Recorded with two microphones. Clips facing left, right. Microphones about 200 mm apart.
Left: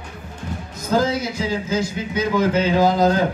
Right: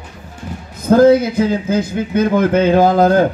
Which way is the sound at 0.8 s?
55° right (ahead or behind).